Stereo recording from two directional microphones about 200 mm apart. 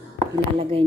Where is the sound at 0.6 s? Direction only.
25° right (ahead or behind).